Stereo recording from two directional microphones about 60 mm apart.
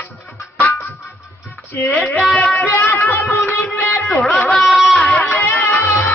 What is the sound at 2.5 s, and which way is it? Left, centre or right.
Speech, left.